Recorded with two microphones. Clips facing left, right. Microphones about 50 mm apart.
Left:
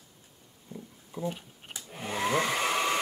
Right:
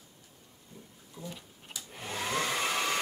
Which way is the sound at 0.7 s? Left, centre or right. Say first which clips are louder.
Left 9 dB; left.